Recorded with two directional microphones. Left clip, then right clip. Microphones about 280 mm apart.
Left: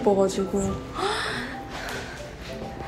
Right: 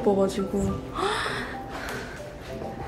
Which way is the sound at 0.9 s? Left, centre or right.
Centre.